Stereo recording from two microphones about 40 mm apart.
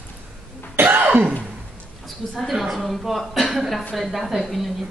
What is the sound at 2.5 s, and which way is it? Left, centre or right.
A woman's voice, centre.